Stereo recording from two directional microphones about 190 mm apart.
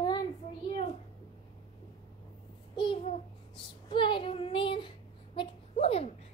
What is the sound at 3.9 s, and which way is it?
Child singing, 25° left (ahead or behind).